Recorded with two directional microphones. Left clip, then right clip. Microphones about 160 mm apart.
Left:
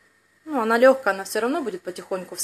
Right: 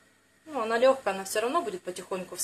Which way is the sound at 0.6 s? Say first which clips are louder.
Left 7 dB; 65° left (ahead or behind).